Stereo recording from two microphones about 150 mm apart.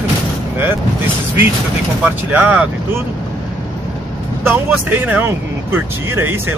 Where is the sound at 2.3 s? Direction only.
10° right (ahead or behind).